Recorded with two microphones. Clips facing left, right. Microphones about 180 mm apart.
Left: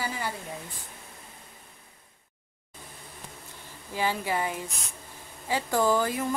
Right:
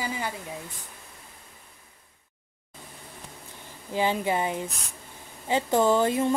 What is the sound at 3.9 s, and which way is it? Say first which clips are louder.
Speech: right 3 dB; 20° right (ahead or behind).